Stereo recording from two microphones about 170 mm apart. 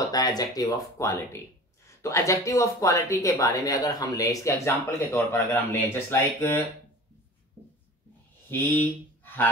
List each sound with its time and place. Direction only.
0.1 s speech: 20° left (ahead or behind)
8.5 s speech: 10° left (ahead or behind)